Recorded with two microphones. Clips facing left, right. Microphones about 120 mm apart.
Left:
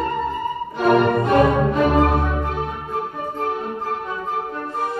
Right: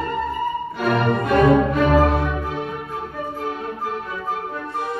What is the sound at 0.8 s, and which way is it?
Music, 30° left (ahead or behind).